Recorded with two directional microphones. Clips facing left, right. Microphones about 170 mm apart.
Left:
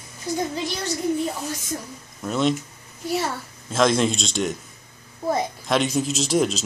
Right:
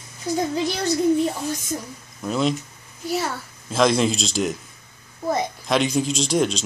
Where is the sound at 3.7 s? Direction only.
Centre (ahead or behind).